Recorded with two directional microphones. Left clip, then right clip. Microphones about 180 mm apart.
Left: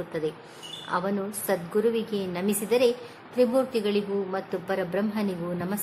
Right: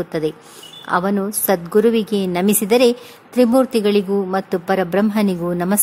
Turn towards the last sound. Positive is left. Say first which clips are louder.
# right 11 dB
turn(degrees=-50)  # may be behind; listen again after turning